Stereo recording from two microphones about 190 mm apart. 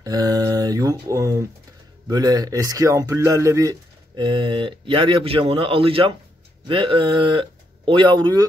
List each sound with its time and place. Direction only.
0.0 s a man's voice: 20° right (ahead or behind)